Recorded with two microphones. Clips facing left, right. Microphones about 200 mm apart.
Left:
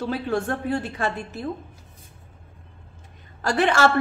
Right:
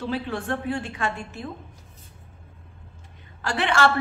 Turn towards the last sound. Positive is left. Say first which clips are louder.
# left 3 dB
turn(degrees=40)  # may be behind; listen again after turning